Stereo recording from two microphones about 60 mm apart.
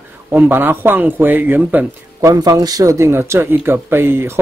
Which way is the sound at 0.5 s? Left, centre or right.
Right.